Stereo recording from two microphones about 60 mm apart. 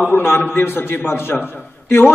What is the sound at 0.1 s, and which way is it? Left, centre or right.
A man's voice, left.